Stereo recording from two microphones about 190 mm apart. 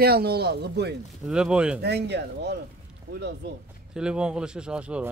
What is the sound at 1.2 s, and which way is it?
Speech, 5° right (ahead or behind).